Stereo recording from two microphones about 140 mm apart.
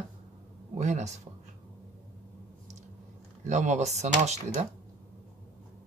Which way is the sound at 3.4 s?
60° right (ahead or behind).